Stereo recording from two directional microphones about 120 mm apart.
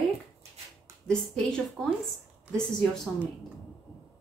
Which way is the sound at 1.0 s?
5° left (ahead or behind).